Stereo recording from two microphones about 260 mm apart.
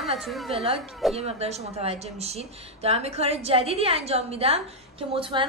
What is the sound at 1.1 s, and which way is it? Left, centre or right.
Speech, right.